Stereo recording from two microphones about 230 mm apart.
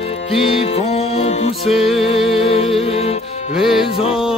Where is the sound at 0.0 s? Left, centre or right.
Left.